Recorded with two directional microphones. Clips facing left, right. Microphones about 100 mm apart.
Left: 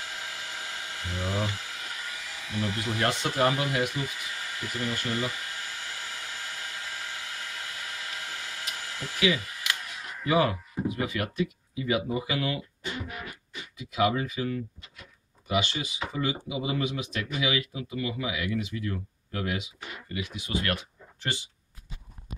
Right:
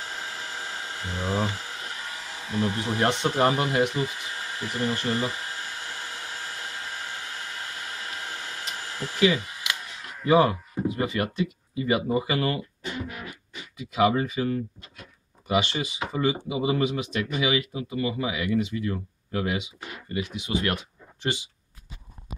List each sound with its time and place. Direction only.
0.0 s a sound: 35° right (ahead or behind)
10.2 s speech: 30° right (ahead or behind)
11.8 s speech: 50° right (ahead or behind)
13.9 s speech: 30° right (ahead or behind)